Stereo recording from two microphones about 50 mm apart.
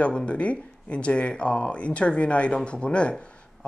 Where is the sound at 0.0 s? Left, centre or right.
Left.